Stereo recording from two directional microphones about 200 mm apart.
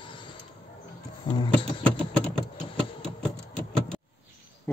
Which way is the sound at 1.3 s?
20° left (ahead or behind).